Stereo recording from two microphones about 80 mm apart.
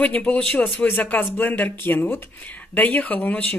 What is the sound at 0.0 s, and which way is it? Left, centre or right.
Speech, centre.